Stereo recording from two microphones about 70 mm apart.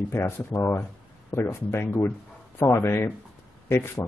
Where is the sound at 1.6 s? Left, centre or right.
Left.